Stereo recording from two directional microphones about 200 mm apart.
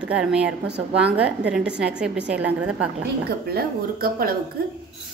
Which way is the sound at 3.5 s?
45° right (ahead or behind).